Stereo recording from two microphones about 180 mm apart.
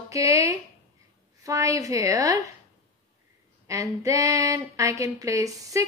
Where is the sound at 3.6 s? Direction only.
15° right (ahead or behind).